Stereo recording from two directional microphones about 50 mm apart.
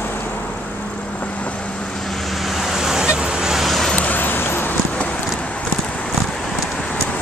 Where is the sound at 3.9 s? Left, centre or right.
Left.